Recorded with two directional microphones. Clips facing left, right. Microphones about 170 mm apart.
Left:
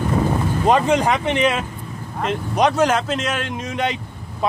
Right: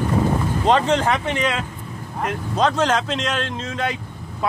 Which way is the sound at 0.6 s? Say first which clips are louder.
Left 2 dB; 10° left (ahead or behind).